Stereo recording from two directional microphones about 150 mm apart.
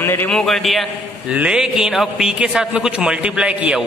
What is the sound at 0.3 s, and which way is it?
A man's voice, 5° left (ahead or behind).